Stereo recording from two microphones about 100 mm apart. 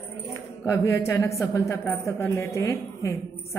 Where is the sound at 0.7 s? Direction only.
25° left (ahead or behind).